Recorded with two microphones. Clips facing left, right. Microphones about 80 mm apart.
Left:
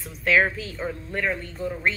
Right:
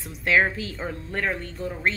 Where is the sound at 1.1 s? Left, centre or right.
Right.